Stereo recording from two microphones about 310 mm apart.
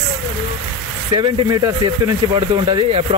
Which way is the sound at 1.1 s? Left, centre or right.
Centre.